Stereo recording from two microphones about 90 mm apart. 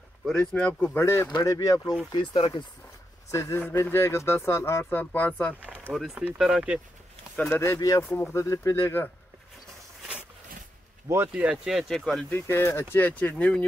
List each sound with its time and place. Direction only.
0.2 s speech: 5° left (ahead or behind)
0.9 s speech: 25° left (ahead or behind)
1.4 s speech: 40° left (ahead or behind)
2.1 s speech: 60° left (ahead or behind)
3.3 s speech: 30° left (ahead or behind)
6.1 s speech: 10° right (ahead or behind)
7.4 s speech: 25° left (ahead or behind)
8.0 s speech: 25° left (ahead or behind)
11.5 s speech: centre (ahead or behind)
12.3 s speech: 25° left (ahead or behind)